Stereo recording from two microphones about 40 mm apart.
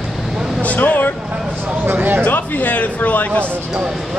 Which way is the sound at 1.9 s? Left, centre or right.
Right.